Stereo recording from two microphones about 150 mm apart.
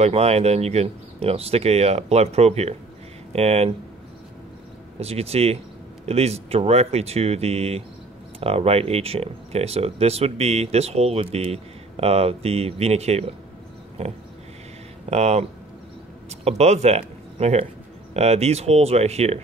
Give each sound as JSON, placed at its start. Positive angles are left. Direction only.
{"t": 0.0, "sound": "speech", "side_deg": -45}
{"t": 4.9, "sound": "speech", "side_deg": -45}
{"t": 15.0, "sound": "speech", "side_deg": -45}